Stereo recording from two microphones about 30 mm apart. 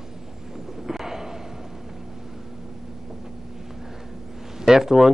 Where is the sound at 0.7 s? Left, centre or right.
Centre.